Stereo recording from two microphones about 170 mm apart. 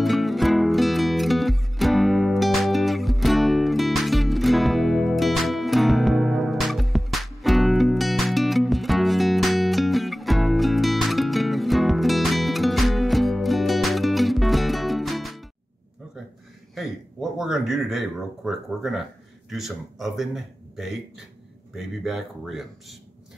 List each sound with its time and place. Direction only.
0.0 s music: centre (ahead or behind)
16.7 s a sound: centre (ahead or behind)
19.5 s speech: centre (ahead or behind)